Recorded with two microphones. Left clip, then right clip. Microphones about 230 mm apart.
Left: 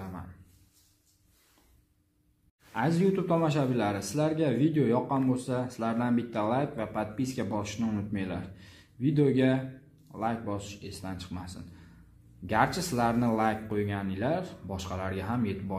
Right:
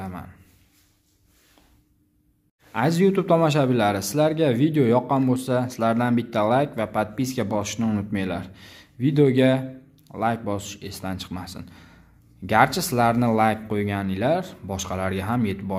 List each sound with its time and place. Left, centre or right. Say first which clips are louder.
2.7 s speech: right 7 dB; right